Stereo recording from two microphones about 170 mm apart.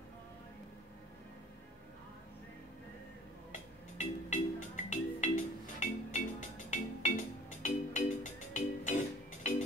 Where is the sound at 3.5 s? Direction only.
45° left (ahead or behind).